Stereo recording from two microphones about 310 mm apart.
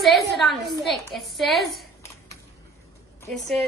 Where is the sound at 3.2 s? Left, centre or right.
Centre.